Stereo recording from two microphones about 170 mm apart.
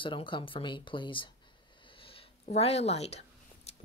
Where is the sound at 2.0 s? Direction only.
35° left (ahead or behind).